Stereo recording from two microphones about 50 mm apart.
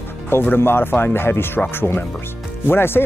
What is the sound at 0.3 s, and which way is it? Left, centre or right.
Speech, left.